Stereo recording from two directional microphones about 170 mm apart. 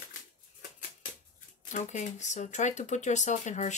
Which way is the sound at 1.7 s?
45° left (ahead or behind).